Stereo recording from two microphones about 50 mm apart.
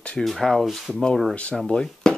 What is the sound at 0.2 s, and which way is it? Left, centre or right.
Speech, centre.